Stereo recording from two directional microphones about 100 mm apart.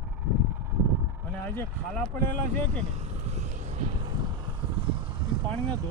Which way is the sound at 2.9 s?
90° right.